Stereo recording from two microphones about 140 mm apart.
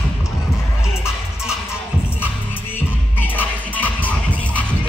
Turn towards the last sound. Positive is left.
turn(degrees=10)  # may be behind; listen again after turning